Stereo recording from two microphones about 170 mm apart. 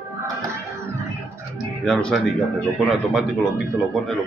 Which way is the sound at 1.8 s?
5° left (ahead or behind).